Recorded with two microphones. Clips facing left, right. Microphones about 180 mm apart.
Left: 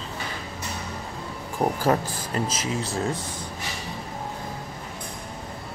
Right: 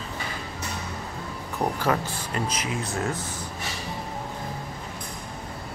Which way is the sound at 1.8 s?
40° left (ahead or behind).